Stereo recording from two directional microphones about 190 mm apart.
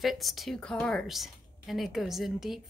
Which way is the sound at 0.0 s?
Centre (ahead or behind).